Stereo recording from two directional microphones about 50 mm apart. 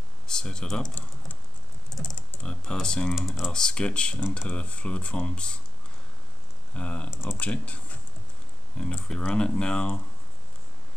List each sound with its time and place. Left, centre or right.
0.3 s speech: centre
2.4 s speech: centre
3.2 s speech: centre
3.5 s speech: centre
6.7 s speech: left